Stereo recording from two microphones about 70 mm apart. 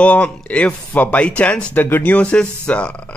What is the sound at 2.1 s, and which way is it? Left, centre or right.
Speech, centre.